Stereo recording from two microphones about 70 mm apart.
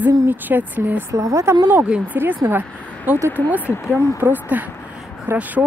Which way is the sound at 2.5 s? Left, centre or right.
Right.